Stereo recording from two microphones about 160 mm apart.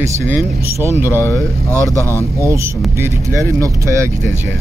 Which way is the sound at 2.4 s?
15° right (ahead or behind).